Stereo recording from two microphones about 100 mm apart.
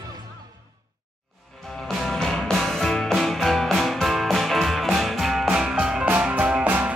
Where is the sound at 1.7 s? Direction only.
Centre (ahead or behind).